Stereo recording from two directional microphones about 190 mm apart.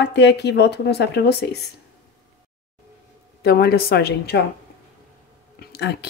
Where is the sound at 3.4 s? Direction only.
55° left (ahead or behind).